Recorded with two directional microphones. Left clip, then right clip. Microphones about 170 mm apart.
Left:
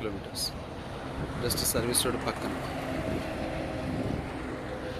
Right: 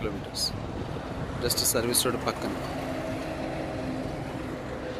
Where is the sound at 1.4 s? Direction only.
10° right (ahead or behind).